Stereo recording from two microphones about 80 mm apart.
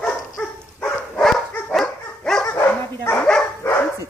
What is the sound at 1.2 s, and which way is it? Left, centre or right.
Dog, centre.